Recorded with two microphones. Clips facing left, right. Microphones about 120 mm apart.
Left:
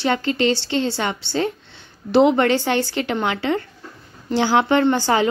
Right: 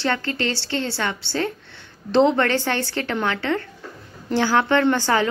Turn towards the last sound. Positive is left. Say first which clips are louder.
# left 2 dB
turn(degrees=15)  # may be behind; listen again after turning